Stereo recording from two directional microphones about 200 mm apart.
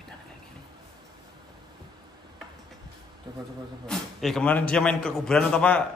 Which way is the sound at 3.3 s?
20° right (ahead or behind).